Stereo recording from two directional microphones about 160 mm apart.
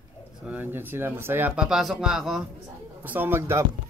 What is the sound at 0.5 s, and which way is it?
Speech, 10° right (ahead or behind).